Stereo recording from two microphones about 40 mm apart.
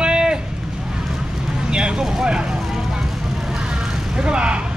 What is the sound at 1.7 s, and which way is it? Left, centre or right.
Speech, right.